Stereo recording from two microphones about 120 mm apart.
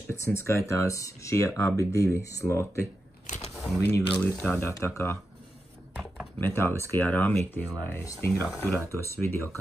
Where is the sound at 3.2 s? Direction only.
80° left.